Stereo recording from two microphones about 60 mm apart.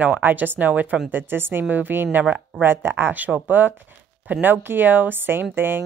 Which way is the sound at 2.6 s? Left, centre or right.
Right.